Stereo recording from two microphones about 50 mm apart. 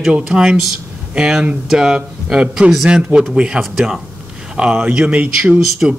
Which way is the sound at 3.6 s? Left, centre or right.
Centre.